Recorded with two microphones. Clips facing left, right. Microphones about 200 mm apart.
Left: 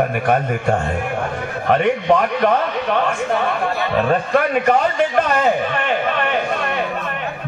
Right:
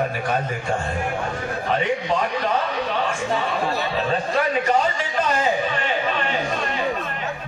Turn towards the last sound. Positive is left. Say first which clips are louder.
# left 4 dB
turn(degrees=60)  # may be behind; listen again after turning